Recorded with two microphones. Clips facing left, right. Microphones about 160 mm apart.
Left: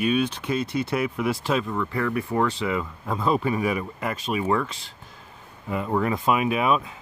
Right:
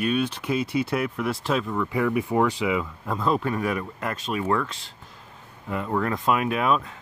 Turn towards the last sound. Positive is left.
turn(degrees=5)  # may be behind; listen again after turning